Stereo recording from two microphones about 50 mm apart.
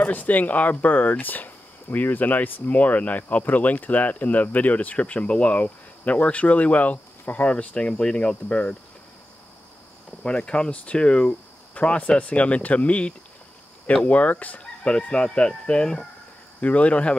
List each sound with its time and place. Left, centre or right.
0.0 s speech: left
10.2 s speech: left
14.6 s speech: left
16.6 s speech: left